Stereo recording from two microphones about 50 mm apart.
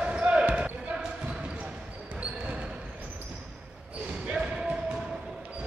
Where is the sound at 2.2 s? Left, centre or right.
Right.